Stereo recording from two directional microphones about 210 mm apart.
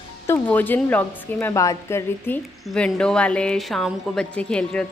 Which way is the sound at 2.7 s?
5° left (ahead or behind).